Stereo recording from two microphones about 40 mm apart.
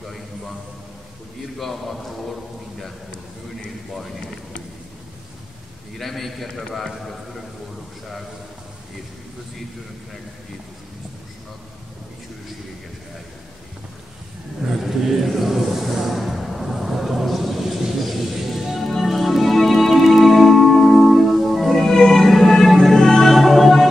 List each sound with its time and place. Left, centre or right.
1.6 s a man's voice: centre
5.9 s a man's voice: centre
14.6 s a sound: centre
18.9 s music: centre
21.8 s music: centre